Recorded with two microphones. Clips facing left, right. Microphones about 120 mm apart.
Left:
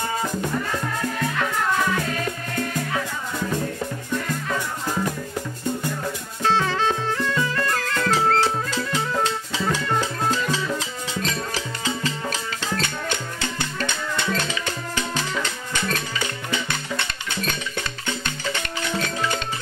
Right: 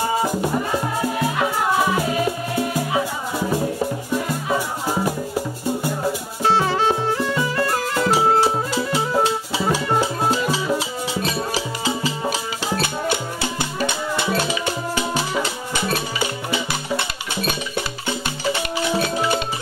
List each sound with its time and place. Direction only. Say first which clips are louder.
0.5 s music: right 4 dB; 25° right (ahead or behind)
3.8 s music: right 5 dB; 35° right (ahead or behind)
4.5 s music: right 4 dB; 10° right (ahead or behind)